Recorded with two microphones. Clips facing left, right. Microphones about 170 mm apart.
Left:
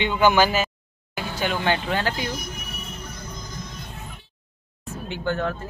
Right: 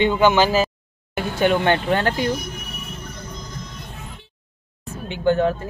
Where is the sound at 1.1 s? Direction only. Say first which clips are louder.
Right 8 dB; 55° right (ahead or behind).